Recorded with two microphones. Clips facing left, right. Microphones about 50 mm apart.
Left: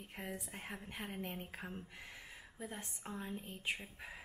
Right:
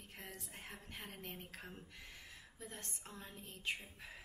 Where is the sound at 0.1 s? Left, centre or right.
Centre.